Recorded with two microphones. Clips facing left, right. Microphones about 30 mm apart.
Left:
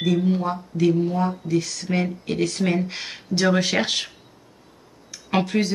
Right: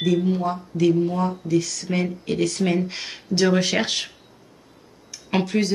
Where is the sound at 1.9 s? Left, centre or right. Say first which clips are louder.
Even; centre.